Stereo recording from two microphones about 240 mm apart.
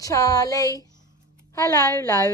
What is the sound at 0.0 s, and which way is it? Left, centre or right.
Speech, centre.